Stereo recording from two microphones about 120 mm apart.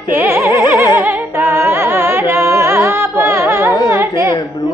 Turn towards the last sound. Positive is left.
turn(degrees=-25)  # may be behind; listen again after turning